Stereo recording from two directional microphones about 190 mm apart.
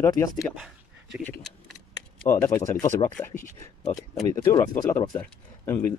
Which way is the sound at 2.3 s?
10° left (ahead or behind).